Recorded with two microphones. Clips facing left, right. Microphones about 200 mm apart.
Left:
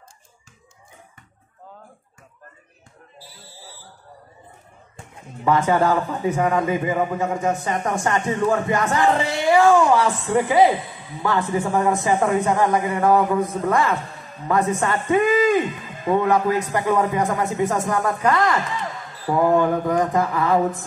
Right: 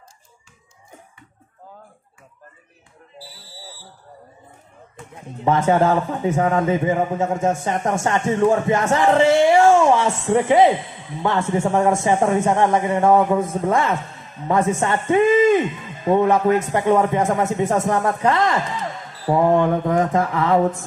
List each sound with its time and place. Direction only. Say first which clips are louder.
5.4 s speech: right 2 dB; 25° right (ahead or behind)